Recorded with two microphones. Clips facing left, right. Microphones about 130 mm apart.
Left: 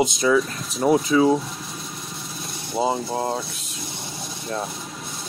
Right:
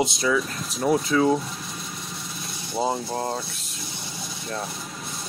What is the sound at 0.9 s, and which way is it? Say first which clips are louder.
Speech: left 3 dB; 5° left (ahead or behind).